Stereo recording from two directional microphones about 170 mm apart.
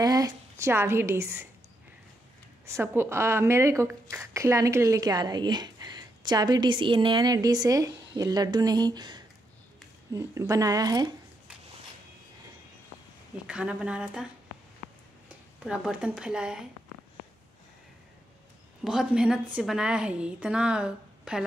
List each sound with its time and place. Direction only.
0.0 s a woman's voice: 20° right (ahead or behind)
2.6 s a woman's voice: 15° right (ahead or behind)
13.5 s a woman's voice: 5° right (ahead or behind)
15.2 s speech: 5° right (ahead or behind)
18.9 s a woman's voice: 5° right (ahead or behind)